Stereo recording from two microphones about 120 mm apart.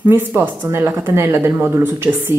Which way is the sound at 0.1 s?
15° right (ahead or behind).